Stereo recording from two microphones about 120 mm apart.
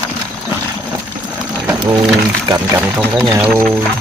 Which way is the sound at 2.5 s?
20° right (ahead or behind).